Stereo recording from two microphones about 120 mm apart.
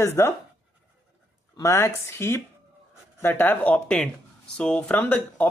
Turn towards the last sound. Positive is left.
turn(degrees=15)  # may be behind; listen again after turning